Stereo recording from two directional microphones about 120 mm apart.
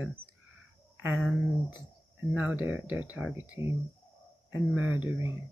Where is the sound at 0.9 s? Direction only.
15° right (ahead or behind).